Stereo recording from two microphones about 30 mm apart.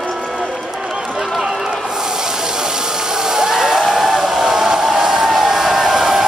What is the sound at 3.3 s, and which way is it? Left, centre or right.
Music, centre.